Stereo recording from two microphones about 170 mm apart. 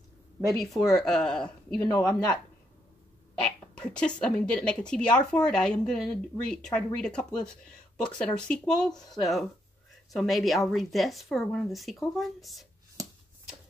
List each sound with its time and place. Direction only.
0.5 s speech: centre (ahead or behind)
1.8 s speech: 15° left (ahead or behind)
3.4 s speech: 5° left (ahead or behind)